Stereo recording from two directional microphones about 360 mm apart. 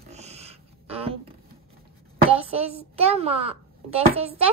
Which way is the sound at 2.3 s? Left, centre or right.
Centre.